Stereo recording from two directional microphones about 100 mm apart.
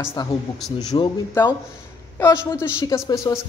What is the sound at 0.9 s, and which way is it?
Speech, 55° left (ahead or behind).